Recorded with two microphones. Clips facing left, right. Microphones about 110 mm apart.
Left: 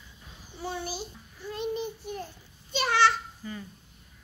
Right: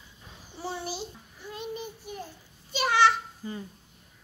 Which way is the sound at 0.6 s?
25° right (ahead or behind).